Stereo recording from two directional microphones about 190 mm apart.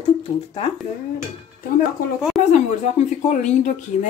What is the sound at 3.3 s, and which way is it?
Speech, 40° left (ahead or behind).